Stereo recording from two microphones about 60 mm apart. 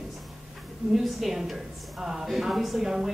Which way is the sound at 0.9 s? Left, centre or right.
Centre.